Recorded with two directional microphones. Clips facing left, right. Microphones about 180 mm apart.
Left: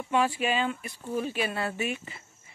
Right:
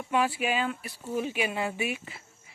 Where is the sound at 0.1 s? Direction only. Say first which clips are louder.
Left 1 dB; 10° right (ahead or behind).